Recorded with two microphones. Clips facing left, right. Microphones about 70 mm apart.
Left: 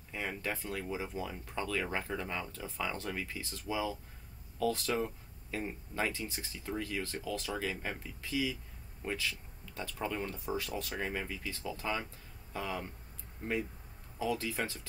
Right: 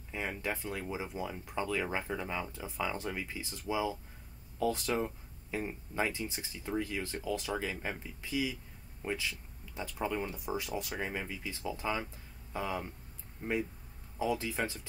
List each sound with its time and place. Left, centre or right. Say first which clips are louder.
0.1 s speech: right 1 dB; centre
14.1 s speech: right 1 dB; centre